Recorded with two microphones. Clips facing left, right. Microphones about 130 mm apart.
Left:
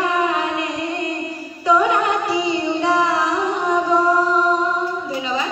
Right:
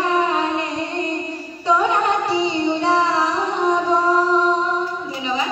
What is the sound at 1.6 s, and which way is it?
Music, 30° right (ahead or behind).